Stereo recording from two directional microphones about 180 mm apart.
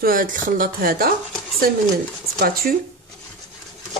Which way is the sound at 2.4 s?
55° right (ahead or behind).